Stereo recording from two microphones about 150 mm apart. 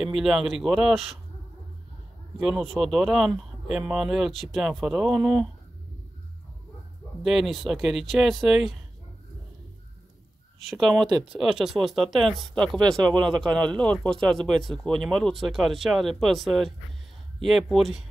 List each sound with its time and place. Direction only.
0.0 s speech: centre (ahead or behind)
2.4 s speech: centre (ahead or behind)
7.2 s speech: centre (ahead or behind)
10.7 s speech: centre (ahead or behind)
11.0 s speech: 30° right (ahead or behind)
11.3 s speech: 5° right (ahead or behind)